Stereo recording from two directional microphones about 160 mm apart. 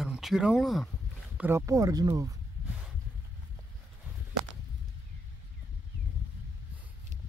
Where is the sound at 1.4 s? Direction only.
15° right (ahead or behind).